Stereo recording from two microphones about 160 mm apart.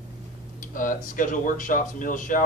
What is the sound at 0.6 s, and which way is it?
Speech, 55° left (ahead or behind).